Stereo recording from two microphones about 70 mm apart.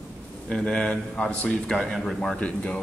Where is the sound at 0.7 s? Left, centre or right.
Centre.